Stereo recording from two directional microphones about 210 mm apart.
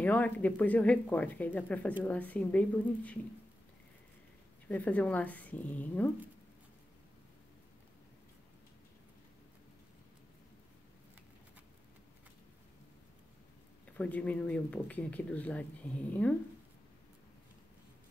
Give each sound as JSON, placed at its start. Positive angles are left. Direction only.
{"t": 0.0, "sound": "speech", "side_deg": 5}
{"t": 4.6, "sound": "speech", "side_deg": 10}
{"t": 13.8, "sound": "speech", "side_deg": 5}